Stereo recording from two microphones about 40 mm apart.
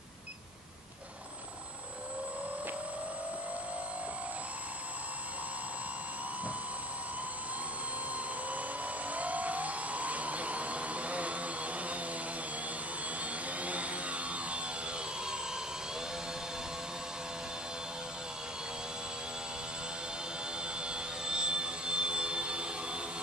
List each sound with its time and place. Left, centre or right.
8.5 s jet engine: right
13.2 s vehicle: right
20.6 s jet engine: right